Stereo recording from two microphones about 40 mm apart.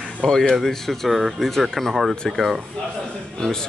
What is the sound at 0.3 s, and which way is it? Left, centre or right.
Speech, centre.